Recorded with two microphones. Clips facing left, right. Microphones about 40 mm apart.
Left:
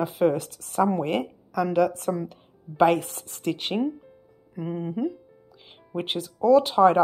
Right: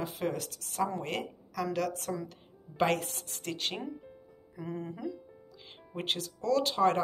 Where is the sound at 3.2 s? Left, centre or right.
Left.